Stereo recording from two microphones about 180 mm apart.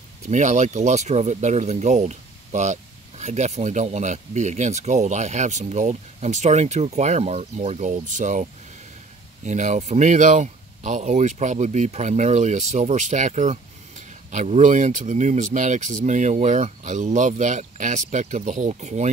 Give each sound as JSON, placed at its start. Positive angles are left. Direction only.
{"t": 0.3, "sound": "speech", "side_deg": -40}